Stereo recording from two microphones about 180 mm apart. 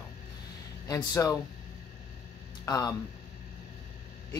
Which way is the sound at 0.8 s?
20° left (ahead or behind).